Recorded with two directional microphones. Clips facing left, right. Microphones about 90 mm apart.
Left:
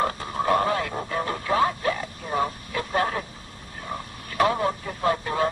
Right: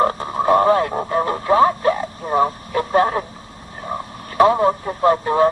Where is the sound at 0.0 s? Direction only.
30° right (ahead or behind).